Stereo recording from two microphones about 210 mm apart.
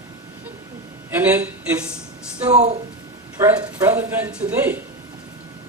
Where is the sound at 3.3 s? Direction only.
15° right (ahead or behind).